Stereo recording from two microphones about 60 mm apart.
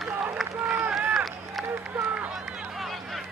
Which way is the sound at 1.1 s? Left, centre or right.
Centre.